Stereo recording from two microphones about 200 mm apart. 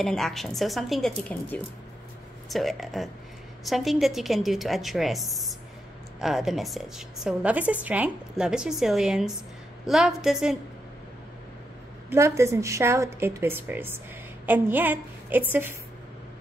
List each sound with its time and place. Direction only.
0.0 s a woman's voice: centre (ahead or behind)
12.1 s a woman's voice: 15° right (ahead or behind)